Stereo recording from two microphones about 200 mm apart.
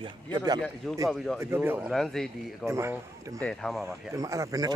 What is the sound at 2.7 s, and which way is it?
Speech, 15° right (ahead or behind).